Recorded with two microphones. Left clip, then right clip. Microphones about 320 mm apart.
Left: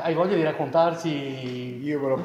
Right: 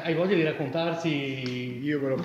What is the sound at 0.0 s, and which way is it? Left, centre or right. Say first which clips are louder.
A man's voice: left 3 dB; centre.